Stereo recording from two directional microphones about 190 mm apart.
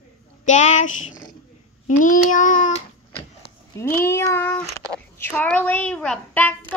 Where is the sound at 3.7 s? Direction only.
15° left (ahead or behind).